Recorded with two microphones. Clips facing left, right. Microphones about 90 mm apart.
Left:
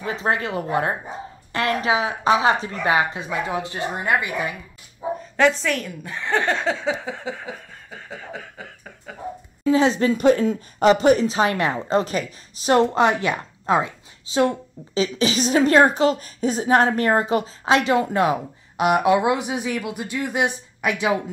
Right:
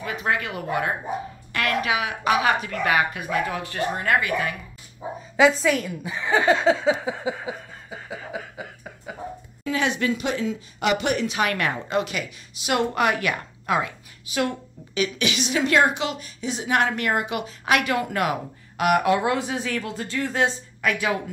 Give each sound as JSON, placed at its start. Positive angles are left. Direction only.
{"t": 0.0, "sound": "a woman's voice", "side_deg": 30}
{"t": 5.4, "sound": "speech", "side_deg": -5}
{"t": 9.7, "sound": "speech", "side_deg": 30}
{"t": 10.1, "sound": "speech", "side_deg": 45}
{"t": 10.9, "sound": "a woman's voice", "side_deg": 35}